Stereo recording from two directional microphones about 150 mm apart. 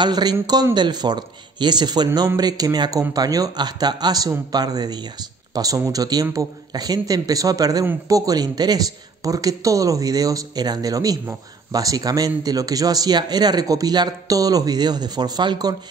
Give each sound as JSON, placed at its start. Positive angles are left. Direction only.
{"t": 0.0, "sound": "a man's voice", "side_deg": -30}